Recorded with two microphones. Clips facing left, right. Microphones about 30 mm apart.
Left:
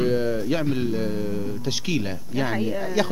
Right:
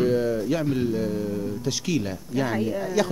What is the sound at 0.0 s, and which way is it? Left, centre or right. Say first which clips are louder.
Speech: even; centre.